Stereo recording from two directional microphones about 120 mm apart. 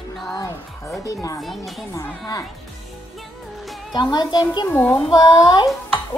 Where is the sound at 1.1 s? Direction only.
30° left (ahead or behind).